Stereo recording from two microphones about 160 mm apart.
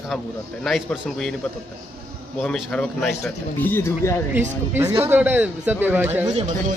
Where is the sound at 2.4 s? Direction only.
5° left (ahead or behind).